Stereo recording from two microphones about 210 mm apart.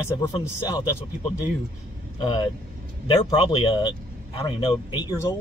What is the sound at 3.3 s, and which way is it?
A man's voice, 20° left (ahead or behind).